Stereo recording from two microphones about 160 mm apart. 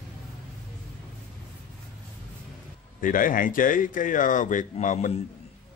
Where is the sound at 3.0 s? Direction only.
60° left (ahead or behind).